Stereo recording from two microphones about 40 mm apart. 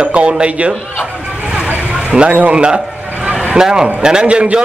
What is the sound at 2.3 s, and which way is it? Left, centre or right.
Speech, right.